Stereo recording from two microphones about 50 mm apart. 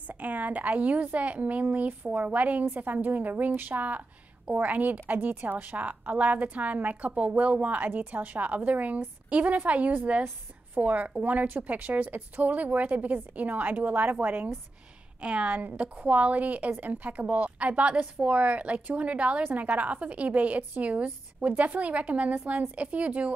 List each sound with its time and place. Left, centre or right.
0.1 s a woman's voice: right